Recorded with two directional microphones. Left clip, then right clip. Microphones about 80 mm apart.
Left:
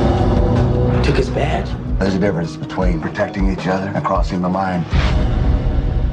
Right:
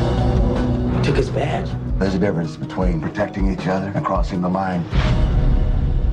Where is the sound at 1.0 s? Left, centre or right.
Left.